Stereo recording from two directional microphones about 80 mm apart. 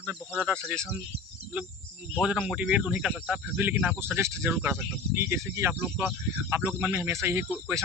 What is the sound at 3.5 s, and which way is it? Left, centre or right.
Speech, right.